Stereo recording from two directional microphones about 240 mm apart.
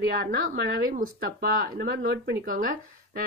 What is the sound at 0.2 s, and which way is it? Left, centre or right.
Speech, right.